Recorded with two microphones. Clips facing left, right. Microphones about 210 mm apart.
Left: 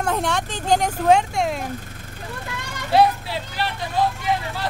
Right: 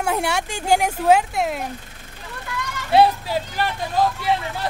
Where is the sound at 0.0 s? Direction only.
10° right (ahead or behind).